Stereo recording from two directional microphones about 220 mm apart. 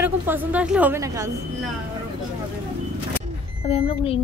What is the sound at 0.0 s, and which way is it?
A woman's voice, 10° right (ahead or behind).